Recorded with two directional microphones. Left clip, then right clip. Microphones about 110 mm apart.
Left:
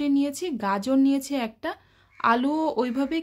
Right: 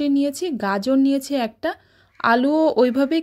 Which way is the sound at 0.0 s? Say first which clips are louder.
Right 4 dB; 30° right (ahead or behind).